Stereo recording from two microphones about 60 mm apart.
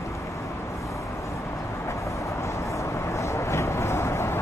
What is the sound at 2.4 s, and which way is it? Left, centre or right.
Vehicle, left.